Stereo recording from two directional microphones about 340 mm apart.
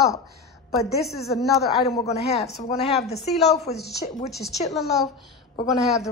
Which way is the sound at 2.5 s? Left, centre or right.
Left.